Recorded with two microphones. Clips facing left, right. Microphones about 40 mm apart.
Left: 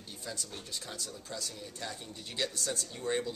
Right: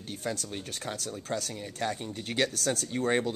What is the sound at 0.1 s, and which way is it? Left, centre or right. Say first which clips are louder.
Speech: right 8 dB; right.